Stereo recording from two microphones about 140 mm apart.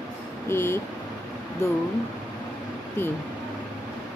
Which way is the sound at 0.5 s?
15° left (ahead or behind).